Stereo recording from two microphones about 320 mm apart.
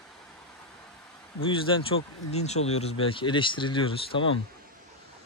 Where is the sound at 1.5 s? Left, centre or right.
Centre.